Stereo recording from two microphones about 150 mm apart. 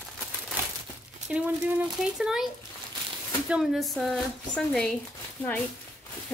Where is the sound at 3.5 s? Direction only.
Centre (ahead or behind).